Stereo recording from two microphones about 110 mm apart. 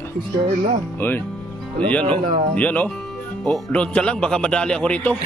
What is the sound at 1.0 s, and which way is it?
A man's voice, 20° left (ahead or behind).